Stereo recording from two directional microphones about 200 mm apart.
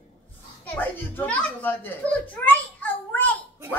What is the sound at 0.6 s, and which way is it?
A child's voice, 10° left (ahead or behind).